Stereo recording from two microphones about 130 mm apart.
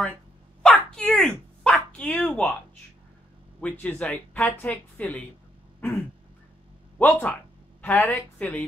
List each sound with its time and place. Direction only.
0.6 s dog: 5° left (ahead or behind)
3.6 s speech: 10° left (ahead or behind)
7.0 s speech: 15° left (ahead or behind)